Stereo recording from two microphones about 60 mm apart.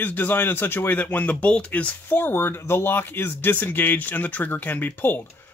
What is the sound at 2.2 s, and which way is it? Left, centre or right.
A man's voice, left.